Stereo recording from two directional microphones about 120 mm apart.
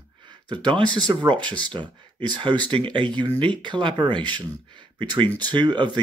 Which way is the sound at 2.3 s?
40° right (ahead or behind).